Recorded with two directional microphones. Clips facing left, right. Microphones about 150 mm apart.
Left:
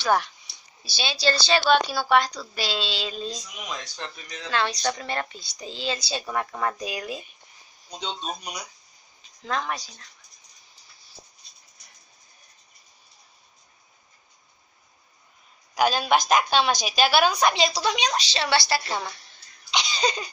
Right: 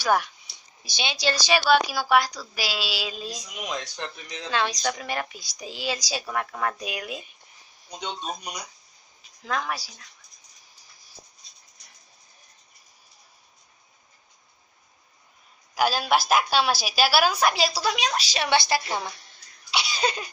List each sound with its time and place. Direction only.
0.0 s a woman's voice: 10° right (ahead or behind)
6.2 s a woman's voice: centre (ahead or behind)
8.0 s a woman's voice: 15° right (ahead or behind)
9.4 s a woman's voice: 5° right (ahead or behind)
15.7 s a woman's voice: 5° right (ahead or behind)